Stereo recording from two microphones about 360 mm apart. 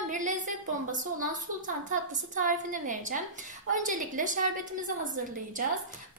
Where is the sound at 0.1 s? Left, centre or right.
Right.